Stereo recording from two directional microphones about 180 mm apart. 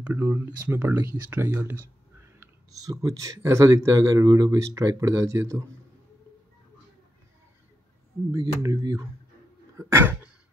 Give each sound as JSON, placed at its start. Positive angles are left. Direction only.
{"t": 0.0, "sound": "speech", "side_deg": -10}
{"t": 8.3, "sound": "speech", "side_deg": -20}
{"t": 9.8, "sound": "a sound", "side_deg": -10}